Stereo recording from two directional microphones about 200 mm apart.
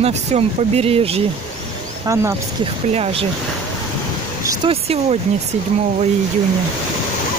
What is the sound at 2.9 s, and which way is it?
Speech, 30° right (ahead or behind).